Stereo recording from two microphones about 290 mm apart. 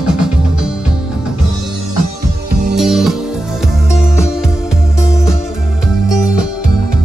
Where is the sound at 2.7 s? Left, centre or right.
Centre.